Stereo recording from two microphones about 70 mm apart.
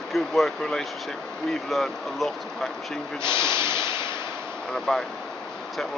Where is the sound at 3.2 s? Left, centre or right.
Right.